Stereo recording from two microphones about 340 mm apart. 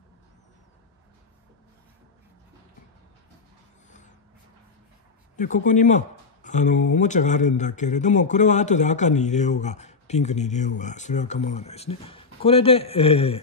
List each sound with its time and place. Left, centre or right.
5.3 s speech: left